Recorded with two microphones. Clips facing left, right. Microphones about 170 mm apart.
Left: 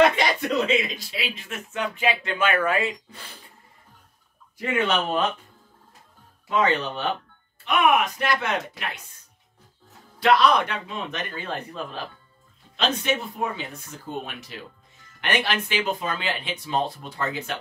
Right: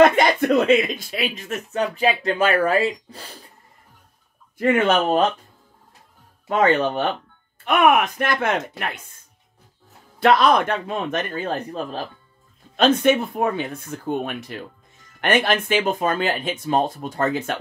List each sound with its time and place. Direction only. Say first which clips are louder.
0.0 s speech: right 5 dB; 50° right (ahead or behind)
4.6 s speech: right 6 dB; 50° right (ahead or behind)
6.4 s speech: right 5 dB; 50° right (ahead or behind)
10.2 s speech: right 3 dB; 50° right (ahead or behind)
12.7 s speech: right 8 dB; 50° right (ahead or behind)